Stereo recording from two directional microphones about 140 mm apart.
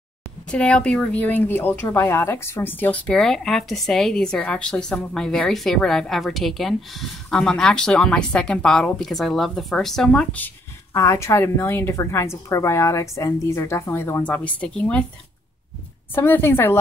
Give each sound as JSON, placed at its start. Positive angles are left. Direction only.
{"t": 0.5, "sound": "speech", "side_deg": 5}
{"t": 10.9, "sound": "a woman's voice", "side_deg": 20}
{"t": 16.2, "sound": "a woman's voice", "side_deg": 15}